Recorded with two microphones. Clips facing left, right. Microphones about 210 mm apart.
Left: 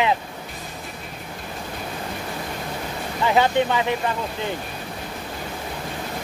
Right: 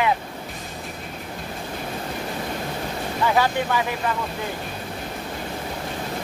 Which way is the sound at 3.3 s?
20° left (ahead or behind).